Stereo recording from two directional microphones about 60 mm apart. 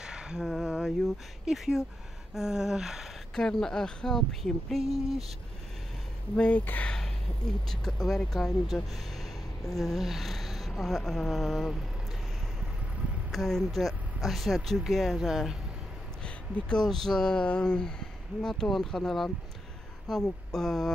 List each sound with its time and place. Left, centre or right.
0.0 s a sound: centre
0.5 s speech: centre
2.3 s a sound: centre
3.3 s speech: centre
6.3 s speech: centre
6.6 s speech: left
7.6 s speech: centre
13.3 s speech: centre
16.5 s speech: centre